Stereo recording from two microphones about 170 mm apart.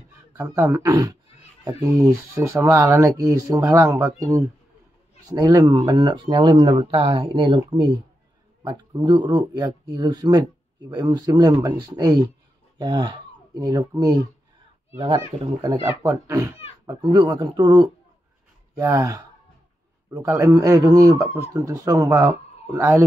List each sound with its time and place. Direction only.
0.4 s speech: 15° right (ahead or behind); by 15.8 s 30° right (ahead or behind)
15.8 s speech: 20° right (ahead or behind)